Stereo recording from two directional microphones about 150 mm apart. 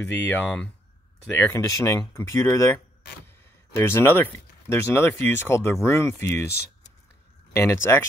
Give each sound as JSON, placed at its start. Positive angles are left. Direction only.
{"t": 0.0, "sound": "speech", "side_deg": 10}
{"t": 7.5, "sound": "speech", "side_deg": 15}